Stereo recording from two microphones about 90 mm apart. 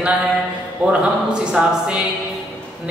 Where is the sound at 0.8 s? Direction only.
20° right (ahead or behind).